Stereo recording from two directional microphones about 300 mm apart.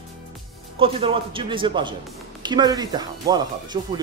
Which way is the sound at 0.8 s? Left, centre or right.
Centre.